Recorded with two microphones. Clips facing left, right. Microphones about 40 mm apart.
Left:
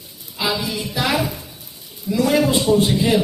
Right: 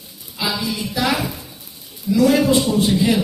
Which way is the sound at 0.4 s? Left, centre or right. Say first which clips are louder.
Left 1 dB; left.